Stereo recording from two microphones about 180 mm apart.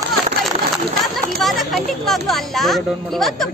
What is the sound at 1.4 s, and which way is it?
Speech, centre (ahead or behind).